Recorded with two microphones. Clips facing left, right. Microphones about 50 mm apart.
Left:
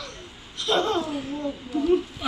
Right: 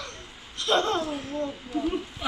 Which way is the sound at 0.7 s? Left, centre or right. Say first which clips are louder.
Left 1 dB; centre.